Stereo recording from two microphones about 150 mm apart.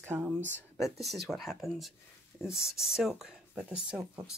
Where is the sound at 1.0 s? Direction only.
Centre (ahead or behind).